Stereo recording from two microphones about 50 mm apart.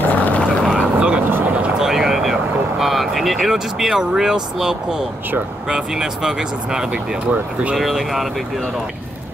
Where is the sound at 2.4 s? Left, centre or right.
Right.